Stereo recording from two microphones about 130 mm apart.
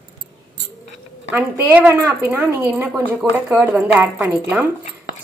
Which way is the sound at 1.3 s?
15° right (ahead or behind).